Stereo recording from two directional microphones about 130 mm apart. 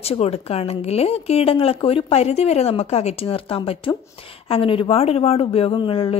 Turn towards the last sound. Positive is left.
turn(degrees=40)  # may be behind; listen again after turning